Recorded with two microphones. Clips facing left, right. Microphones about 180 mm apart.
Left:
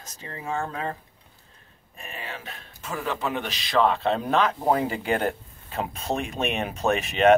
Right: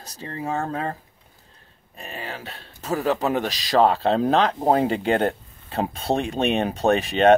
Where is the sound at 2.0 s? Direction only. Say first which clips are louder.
Right 4 dB; 35° right (ahead or behind).